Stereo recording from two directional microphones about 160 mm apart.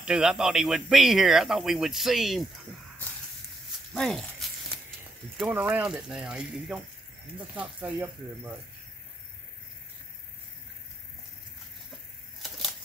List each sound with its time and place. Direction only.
0.0 s speech: 5° right (ahead or behind)
3.9 s speech: 5° left (ahead or behind)
5.4 s speech: 10° right (ahead or behind)